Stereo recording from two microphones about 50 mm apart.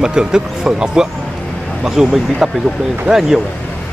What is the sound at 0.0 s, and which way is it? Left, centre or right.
Speech, centre.